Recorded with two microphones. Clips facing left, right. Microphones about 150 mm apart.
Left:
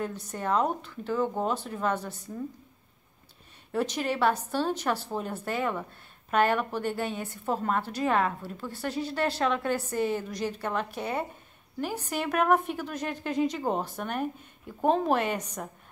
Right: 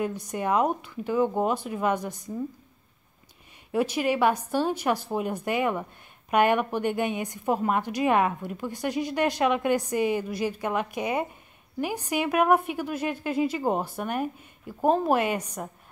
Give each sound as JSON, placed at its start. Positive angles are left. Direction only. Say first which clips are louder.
{"t": 0.0, "sound": "a woman's voice", "louder": "right 4 dB", "side_deg": -10}
{"t": 3.7, "sound": "a woman's voice", "louder": "right 4 dB", "side_deg": -10}